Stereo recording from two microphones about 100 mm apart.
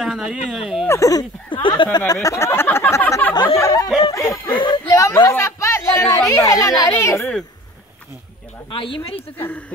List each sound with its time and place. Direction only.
0.0 s speech: 5° right (ahead or behind)
0.8 s speech: 35° left (ahead or behind)
1.5 s speech: 55° left (ahead or behind)
2.2 s a sound: 30° left (ahead or behind)
3.5 s snicker: 30° left (ahead or behind)
4.5 s a sound: 50° left (ahead or behind)
4.8 s a sound: 30° left (ahead or behind)
8.6 s speech: 60° left (ahead or behind)
9.4 s speech: 20° left (ahead or behind)